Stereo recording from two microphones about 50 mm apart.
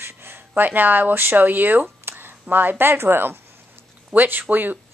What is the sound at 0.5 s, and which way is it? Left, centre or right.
Speech, right.